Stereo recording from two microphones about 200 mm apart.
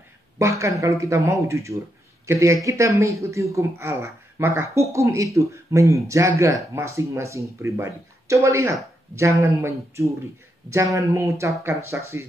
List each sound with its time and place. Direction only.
0.4 s speech: 15° right (ahead or behind)